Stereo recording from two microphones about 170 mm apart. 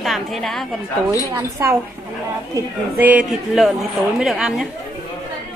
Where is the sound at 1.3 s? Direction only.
15° right (ahead or behind).